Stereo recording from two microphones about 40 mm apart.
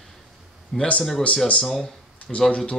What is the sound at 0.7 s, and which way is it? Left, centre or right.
Speech, centre.